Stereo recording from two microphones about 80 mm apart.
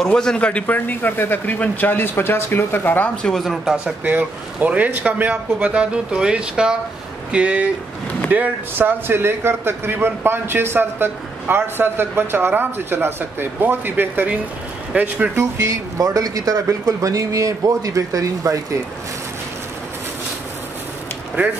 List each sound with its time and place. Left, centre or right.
0.0 s a man's voice: centre; by 3.1 s left
3.2 s speech: centre
4.0 s a man's voice: right
15.3 s speech: right